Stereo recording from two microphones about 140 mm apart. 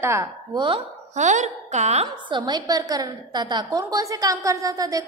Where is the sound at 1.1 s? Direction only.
60° right (ahead or behind).